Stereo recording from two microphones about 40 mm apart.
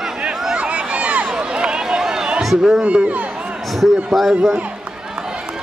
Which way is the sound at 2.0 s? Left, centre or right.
Centre.